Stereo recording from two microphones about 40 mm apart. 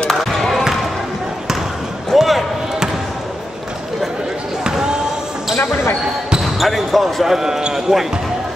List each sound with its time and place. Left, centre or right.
0.1 s basketball bounce: centre
2.1 s basketball bounce: centre
4.6 s basketball bounce: centre
5.6 s basketball bounce: left
6.4 s basketball bounce: centre
7.3 s speech: centre